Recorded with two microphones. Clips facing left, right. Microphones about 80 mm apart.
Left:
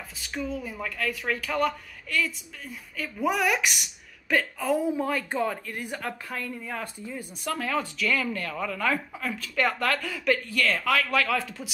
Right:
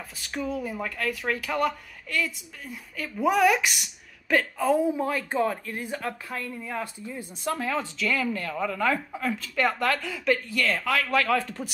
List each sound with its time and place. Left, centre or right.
0.3 s speech: centre
5.0 s speech: centre
7.2 s a man's voice: right